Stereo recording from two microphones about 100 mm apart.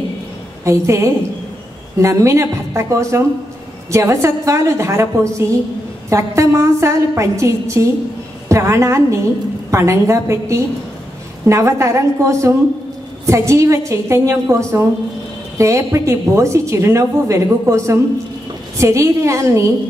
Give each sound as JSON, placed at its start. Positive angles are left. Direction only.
{"t": 0.7, "sound": "a woman's voice", "side_deg": -30}